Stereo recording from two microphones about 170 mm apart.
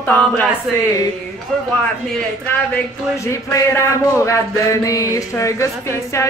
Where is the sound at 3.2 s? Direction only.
20° left (ahead or behind).